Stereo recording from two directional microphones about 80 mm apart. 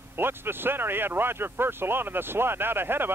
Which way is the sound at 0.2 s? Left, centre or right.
Right.